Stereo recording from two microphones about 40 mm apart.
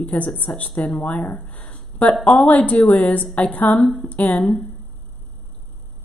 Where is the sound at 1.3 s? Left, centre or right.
Left.